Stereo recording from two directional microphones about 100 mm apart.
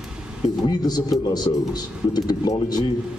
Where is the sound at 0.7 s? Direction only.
40° left (ahead or behind).